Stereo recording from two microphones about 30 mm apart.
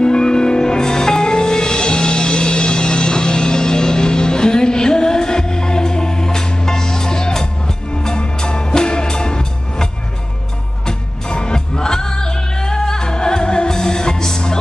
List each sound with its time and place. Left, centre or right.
0.0 s music: left
10.9 s music: left